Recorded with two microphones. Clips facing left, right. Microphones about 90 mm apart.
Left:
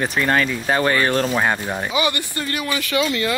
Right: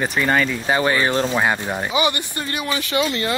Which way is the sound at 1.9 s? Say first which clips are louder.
Right 1 dB; 20° right (ahead or behind).